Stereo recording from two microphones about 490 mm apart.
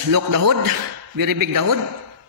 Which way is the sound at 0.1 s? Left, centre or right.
Right.